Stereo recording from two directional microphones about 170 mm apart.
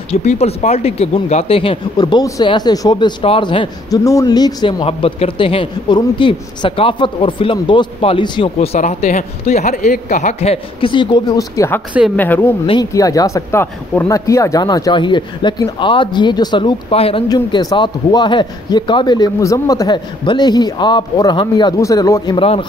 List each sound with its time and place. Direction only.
0.1 s speech: 40° left (ahead or behind)
8.7 s speech: 45° left (ahead or behind); by 12.5 s 10° left (ahead or behind)
12.6 s speech: 25° left (ahead or behind)
17.3 s speech: 25° left (ahead or behind)